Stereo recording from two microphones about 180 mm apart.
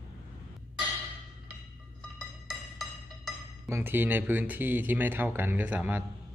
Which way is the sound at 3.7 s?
10° right (ahead or behind).